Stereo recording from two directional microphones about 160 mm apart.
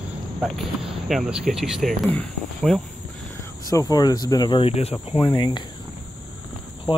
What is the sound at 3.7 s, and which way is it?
Speech, 25° left (ahead or behind).